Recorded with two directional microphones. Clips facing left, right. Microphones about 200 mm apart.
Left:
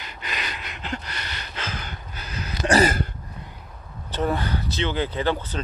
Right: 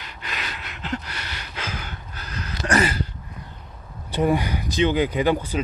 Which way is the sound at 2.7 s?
40° left (ahead or behind).